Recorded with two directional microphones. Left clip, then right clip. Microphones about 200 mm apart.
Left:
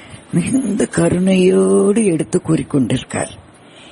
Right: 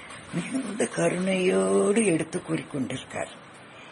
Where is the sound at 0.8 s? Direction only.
45° left (ahead or behind).